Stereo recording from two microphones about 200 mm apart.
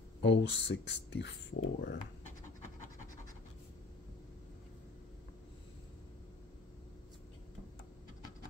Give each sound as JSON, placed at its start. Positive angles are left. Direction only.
{"t": 0.2, "sound": "speech", "side_deg": 60}